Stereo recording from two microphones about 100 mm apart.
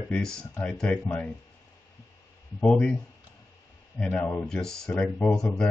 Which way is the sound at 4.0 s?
15° left (ahead or behind).